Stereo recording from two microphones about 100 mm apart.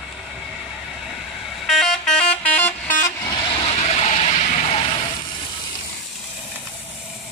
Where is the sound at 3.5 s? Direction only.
80° left.